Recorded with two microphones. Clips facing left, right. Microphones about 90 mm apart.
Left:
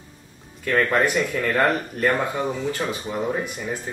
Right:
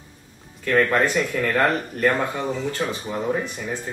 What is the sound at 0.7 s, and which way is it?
Speech, centre (ahead or behind).